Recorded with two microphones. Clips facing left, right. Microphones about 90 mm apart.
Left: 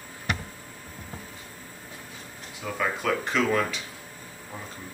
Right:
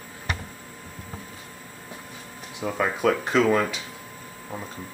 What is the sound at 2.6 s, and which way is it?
Speech, 20° right (ahead or behind).